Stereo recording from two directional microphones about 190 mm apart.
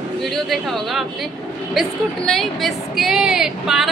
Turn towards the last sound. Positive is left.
turn(degrees=0)  # may be behind; listen again after turning